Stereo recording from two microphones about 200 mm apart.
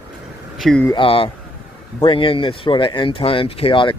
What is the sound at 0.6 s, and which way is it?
Speech, 5° left (ahead or behind).